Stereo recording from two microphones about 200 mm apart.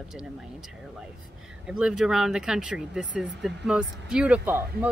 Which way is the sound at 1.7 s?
5° right (ahead or behind).